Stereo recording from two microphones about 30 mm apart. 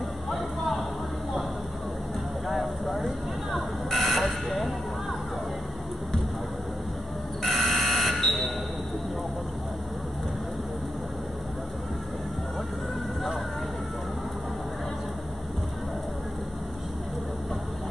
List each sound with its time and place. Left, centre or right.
0.3 s music: centre
2.4 s a sound: centre
7.4 s buzzer: centre
8.1 s fire alarm: centre